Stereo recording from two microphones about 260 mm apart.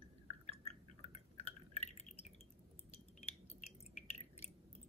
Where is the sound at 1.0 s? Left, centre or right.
Left.